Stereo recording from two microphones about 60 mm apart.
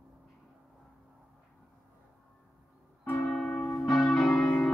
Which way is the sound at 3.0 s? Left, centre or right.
Left.